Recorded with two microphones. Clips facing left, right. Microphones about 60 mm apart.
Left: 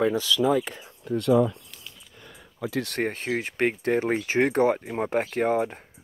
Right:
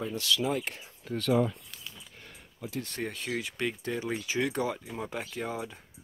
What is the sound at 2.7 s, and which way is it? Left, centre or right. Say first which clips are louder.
Speech: left 9 dB; left.